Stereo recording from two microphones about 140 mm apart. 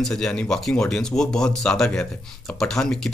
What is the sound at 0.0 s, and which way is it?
Speech, 5° left (ahead or behind).